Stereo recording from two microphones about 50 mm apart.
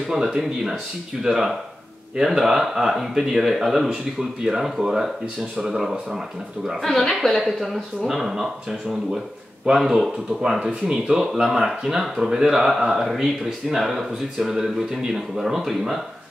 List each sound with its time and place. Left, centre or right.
0.1 s speech: centre
6.8 s speech: centre